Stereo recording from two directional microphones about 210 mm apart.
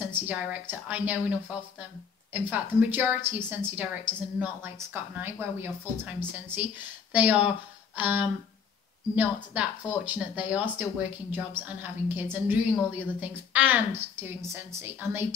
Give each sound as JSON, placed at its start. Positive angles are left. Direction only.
{"t": 0.0, "sound": "a woman's voice", "side_deg": -5}
{"t": 2.3, "sound": "speech", "side_deg": -10}